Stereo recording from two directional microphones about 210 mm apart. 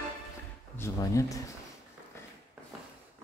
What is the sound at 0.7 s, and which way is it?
Speech, 15° left (ahead or behind).